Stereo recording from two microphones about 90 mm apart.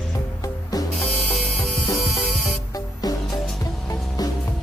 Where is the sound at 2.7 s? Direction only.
45° left (ahead or behind).